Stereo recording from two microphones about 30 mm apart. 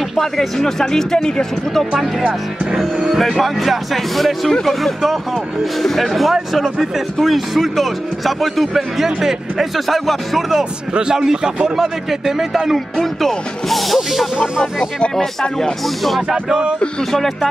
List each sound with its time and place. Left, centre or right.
0.1 s speech: centre
3.2 s speech: centre
6.3 s speech: centre
10.6 s speech: right
12.1 s speech: centre
13.0 s speech: centre
16.0 s speech: centre
17.1 s speech: centre